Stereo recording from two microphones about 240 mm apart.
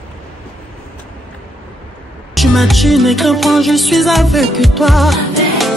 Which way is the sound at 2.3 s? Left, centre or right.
Centre.